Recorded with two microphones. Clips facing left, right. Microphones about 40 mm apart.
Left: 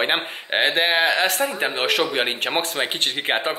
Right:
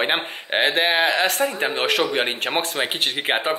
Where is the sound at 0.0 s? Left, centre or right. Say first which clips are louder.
Even; centre.